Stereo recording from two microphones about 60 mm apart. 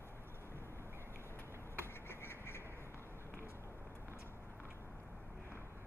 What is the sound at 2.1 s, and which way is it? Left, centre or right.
Duck, left.